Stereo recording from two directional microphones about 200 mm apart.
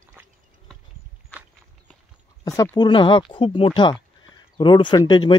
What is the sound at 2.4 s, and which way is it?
A man's voice, 15° left (ahead or behind).